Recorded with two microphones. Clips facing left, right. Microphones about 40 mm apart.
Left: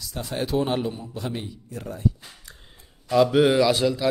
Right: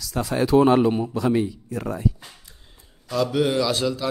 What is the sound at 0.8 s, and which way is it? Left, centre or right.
Speech, right.